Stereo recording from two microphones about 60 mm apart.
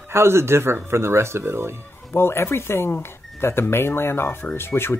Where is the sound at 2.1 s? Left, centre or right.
Left.